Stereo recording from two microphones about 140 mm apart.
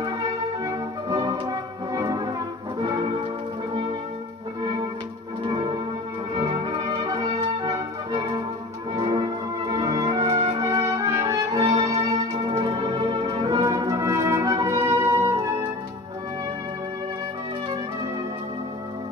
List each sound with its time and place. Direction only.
1.0 s music: 25° right (ahead or behind)
5.4 s music: 35° right (ahead or behind)